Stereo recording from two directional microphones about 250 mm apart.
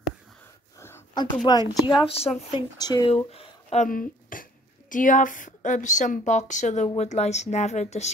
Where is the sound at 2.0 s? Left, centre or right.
Left.